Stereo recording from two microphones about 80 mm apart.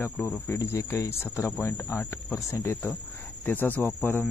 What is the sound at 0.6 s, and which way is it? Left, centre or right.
Speech, left.